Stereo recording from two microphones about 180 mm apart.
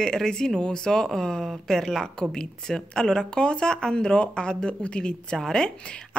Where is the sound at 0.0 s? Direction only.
5° left (ahead or behind).